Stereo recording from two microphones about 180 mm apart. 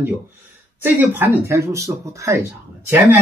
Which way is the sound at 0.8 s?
10° right (ahead or behind).